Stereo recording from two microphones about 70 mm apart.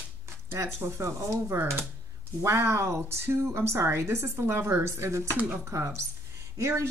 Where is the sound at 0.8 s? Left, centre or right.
Right.